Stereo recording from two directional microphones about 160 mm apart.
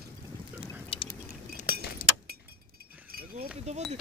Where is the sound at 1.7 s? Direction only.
75° right (ahead or behind).